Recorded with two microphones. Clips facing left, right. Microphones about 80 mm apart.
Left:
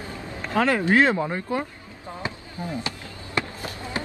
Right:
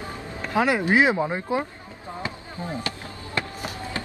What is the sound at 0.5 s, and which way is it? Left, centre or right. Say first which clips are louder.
Speech: even; centre.